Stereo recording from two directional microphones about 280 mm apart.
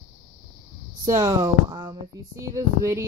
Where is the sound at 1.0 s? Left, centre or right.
Centre.